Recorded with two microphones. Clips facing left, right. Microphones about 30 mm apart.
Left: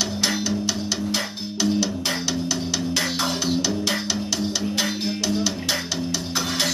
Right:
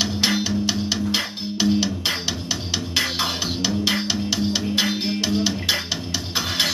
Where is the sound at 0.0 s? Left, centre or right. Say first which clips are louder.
Right 2 dB; right.